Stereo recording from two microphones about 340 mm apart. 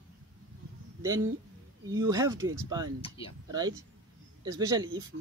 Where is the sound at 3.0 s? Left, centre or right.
Centre.